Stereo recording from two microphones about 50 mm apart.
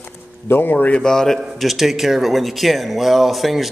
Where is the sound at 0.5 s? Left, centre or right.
Left.